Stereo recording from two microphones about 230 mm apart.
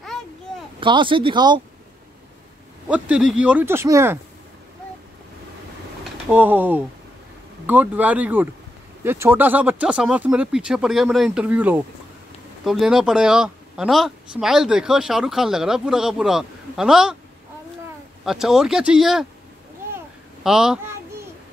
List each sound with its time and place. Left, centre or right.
0.7 s speech: right
2.9 s speech: centre
6.3 s speech: centre
18.2 s speech: centre
20.4 s speech: centre